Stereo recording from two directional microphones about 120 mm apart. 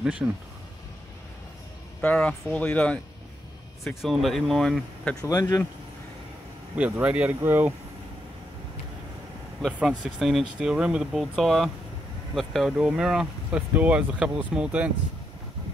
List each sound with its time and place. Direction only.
0.2 s speech: 15° right (ahead or behind)
2.0 s speech: 10° left (ahead or behind)
3.8 s speech: centre (ahead or behind)
5.2 s speech: 30° left (ahead or behind)
6.7 s speech: 10° right (ahead or behind)
9.8 s speech: 5° right (ahead or behind)